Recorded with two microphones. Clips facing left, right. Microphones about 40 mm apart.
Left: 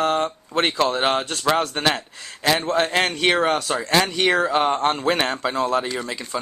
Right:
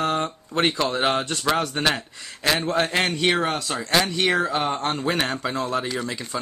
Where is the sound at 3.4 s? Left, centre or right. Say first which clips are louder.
Left 4 dB; left.